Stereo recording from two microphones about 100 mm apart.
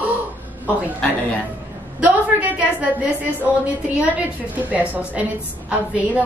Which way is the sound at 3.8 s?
15° right (ahead or behind).